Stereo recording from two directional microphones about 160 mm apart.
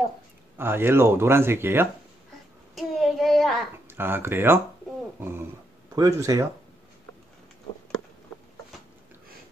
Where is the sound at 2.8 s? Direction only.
Centre (ahead or behind).